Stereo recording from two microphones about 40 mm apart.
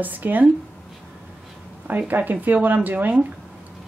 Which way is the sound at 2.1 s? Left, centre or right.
Right.